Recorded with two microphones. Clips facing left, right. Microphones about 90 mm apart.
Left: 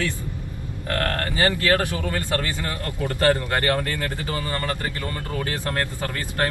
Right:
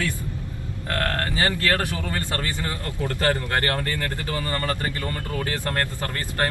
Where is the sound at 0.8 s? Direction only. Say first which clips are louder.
Left 1 dB; 20° right (ahead or behind).